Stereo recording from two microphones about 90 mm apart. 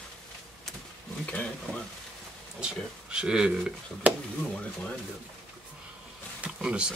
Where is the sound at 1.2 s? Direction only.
15° left (ahead or behind).